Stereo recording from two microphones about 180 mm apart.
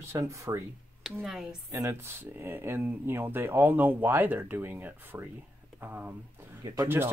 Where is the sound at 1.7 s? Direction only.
15° right (ahead or behind).